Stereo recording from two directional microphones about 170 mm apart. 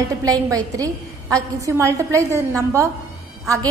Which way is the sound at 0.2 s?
20° right (ahead or behind).